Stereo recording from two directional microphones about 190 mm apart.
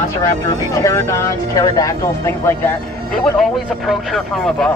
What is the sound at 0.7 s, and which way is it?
Speech, 15° left (ahead or behind).